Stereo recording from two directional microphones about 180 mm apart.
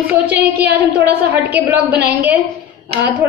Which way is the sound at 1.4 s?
60° right (ahead or behind).